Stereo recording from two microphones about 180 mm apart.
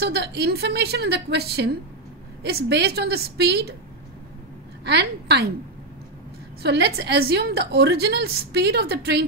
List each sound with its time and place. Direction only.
0.0 s a woman's voice: 65° right (ahead or behind)
4.8 s a woman's voice: 65° right (ahead or behind)
6.6 s a woman's voice: 65° right (ahead or behind)